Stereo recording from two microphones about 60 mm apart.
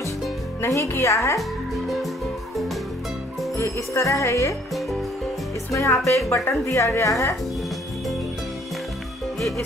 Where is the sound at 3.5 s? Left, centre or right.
Left.